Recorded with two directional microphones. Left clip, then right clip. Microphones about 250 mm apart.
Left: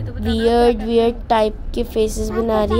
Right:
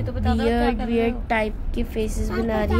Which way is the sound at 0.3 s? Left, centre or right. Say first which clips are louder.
Left 8 dB; centre.